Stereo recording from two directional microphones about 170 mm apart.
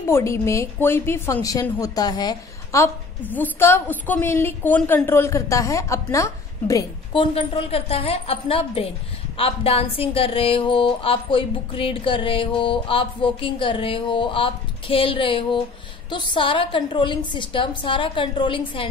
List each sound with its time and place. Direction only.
0.1 s a woman's voice: 15° left (ahead or behind)
7.3 s a woman's voice: 35° left (ahead or behind)